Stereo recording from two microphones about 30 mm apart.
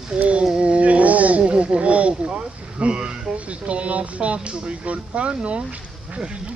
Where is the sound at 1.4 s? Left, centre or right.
Right.